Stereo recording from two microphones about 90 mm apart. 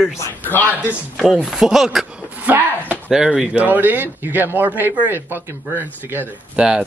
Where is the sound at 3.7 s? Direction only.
20° right (ahead or behind).